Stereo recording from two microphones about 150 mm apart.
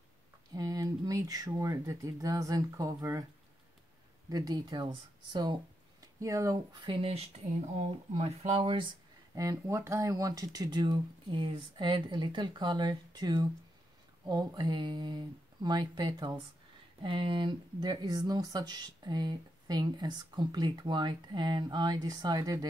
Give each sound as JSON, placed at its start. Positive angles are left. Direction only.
{"t": 0.6, "sound": "speech", "side_deg": -25}
{"t": 4.3, "sound": "speech", "side_deg": -25}
{"t": 8.2, "sound": "speech", "side_deg": -45}
{"t": 9.3, "sound": "speech", "side_deg": -20}